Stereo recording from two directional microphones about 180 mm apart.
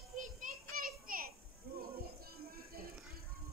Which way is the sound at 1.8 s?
55° right (ahead or behind).